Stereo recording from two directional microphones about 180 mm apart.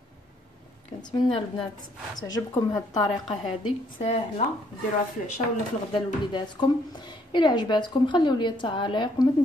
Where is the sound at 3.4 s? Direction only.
35° left (ahead or behind).